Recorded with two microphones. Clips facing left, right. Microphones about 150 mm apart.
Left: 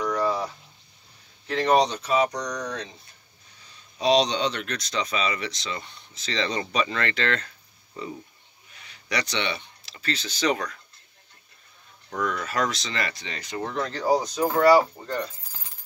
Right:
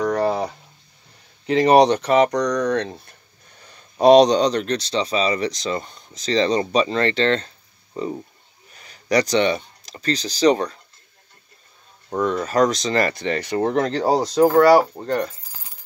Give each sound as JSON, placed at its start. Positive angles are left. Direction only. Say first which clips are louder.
{"t": 0.0, "sound": "a sound", "louder": "right 5 dB", "side_deg": -60}
{"t": 1.5, "sound": "speech", "louder": "right 7 dB", "side_deg": -75}
{"t": 12.1, "sound": "speech", "louder": "right 7 dB", "side_deg": -30}